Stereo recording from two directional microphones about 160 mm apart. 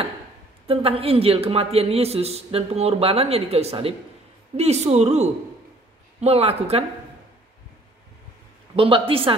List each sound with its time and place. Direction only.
0.7 s a man's voice: 35° right (ahead or behind)
8.7 s a man's voice: 35° right (ahead or behind)